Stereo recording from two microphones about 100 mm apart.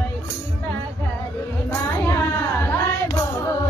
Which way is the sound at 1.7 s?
25° left (ahead or behind).